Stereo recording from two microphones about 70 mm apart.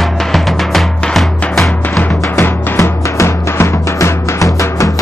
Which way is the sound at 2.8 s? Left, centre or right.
Left.